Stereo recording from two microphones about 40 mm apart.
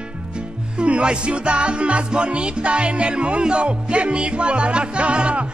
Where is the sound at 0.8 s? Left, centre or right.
Right.